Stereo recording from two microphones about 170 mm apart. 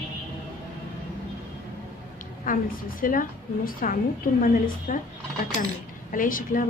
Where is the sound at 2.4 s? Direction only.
50° left (ahead or behind).